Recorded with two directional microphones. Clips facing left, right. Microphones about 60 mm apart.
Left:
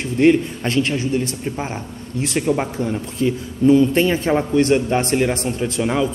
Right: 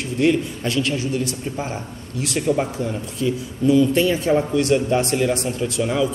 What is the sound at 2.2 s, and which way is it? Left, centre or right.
A man's voice, left.